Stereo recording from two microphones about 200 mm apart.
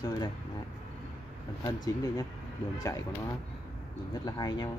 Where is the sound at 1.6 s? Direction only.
20° left (ahead or behind).